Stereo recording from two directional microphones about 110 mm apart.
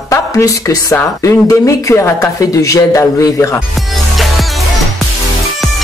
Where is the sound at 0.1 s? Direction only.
30° left (ahead or behind).